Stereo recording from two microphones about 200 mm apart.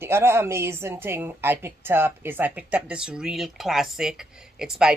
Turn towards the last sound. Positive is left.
turn(degrees=-5)  # may be behind; listen again after turning